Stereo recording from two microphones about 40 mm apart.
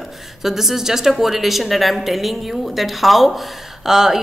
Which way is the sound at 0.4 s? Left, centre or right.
Centre.